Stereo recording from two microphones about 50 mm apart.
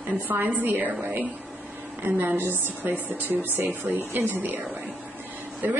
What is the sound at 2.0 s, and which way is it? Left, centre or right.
Speech, right.